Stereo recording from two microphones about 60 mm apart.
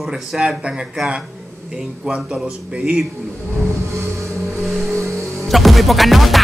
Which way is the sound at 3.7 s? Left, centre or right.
Right.